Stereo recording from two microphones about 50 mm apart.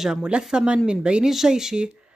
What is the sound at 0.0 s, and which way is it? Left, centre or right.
Speech, centre.